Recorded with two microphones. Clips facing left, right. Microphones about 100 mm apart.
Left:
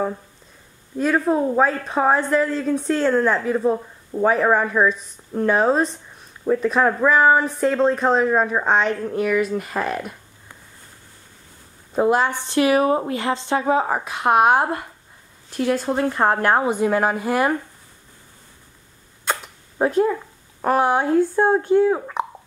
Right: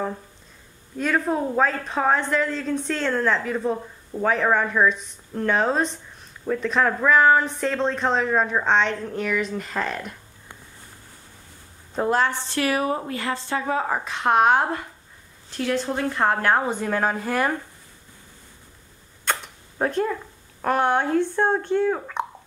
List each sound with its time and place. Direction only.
0.9 s a woman's voice: 5° left (ahead or behind)
11.9 s a woman's voice: 10° left (ahead or behind)
19.2 s camera: 5° left (ahead or behind)
20.6 s a woman's voice: 5° left (ahead or behind)